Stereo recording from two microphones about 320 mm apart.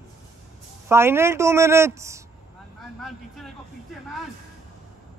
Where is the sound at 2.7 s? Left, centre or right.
Centre.